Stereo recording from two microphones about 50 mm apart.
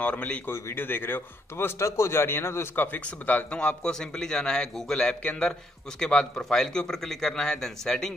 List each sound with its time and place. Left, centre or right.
0.0 s speech: left
0.7 s a man's voice: left
1.8 s a man's voice: left
2.7 s speech: left
3.5 s a man's voice: centre